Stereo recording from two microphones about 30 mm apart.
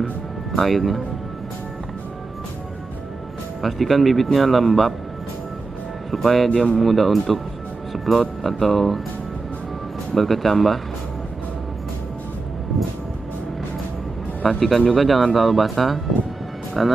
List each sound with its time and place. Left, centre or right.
0.5 s speech: centre
3.6 s speech: centre
6.1 s speech: centre
6.5 s speech: left
6.8 s speech: centre
7.9 s music: centre
8.5 s speech: centre
10.1 s speech: centre
14.5 s speech: centre